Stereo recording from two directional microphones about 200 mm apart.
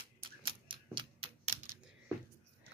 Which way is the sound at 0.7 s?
25° right (ahead or behind).